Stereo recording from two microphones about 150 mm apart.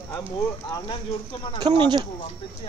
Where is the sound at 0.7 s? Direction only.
20° left (ahead or behind).